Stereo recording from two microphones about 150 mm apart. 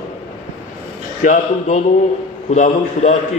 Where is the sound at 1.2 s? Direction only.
55° left (ahead or behind).